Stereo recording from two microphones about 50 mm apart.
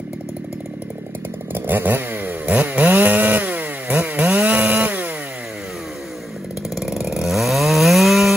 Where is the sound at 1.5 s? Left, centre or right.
Right.